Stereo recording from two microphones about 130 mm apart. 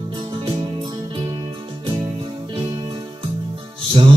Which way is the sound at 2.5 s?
40° right (ahead or behind).